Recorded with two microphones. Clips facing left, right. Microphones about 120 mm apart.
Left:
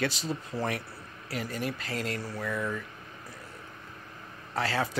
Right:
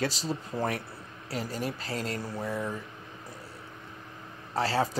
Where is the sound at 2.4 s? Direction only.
35° right (ahead or behind).